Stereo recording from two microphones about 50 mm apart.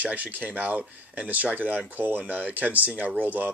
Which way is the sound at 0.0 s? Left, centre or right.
Right.